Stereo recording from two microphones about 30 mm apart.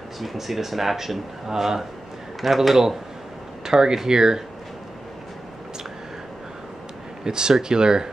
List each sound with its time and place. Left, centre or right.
0.2 s speech: centre
3.6 s speech: centre
7.2 s speech: right